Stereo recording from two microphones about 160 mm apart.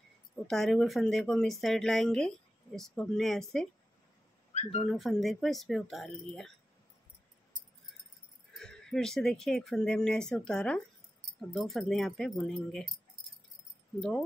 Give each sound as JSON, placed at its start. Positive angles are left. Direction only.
{"t": 0.5, "sound": "speech", "side_deg": 0}
{"t": 4.6, "sound": "speech", "side_deg": 40}
{"t": 4.8, "sound": "speech", "side_deg": 0}
{"t": 8.5, "sound": "speech", "side_deg": 5}